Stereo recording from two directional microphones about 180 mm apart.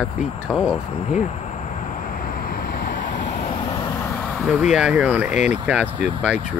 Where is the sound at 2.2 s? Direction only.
50° left (ahead or behind).